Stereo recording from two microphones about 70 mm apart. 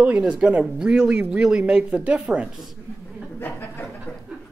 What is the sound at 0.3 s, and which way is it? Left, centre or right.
Speech, centre.